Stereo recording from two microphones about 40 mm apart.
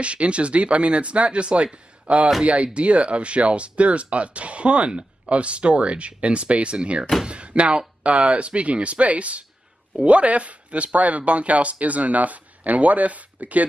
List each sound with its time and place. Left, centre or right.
0.0 s speech: right